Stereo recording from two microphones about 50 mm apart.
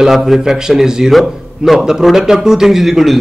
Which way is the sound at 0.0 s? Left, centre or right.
Centre.